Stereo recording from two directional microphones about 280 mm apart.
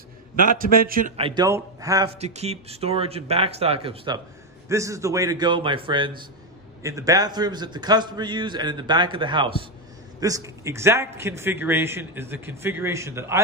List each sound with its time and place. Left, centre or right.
0.5 s a man's voice: right; by 13.4 s centre